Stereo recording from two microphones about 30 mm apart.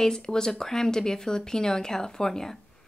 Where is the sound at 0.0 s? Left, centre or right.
Left.